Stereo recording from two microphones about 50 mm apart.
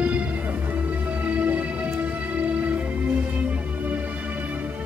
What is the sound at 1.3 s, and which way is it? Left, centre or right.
Music, right.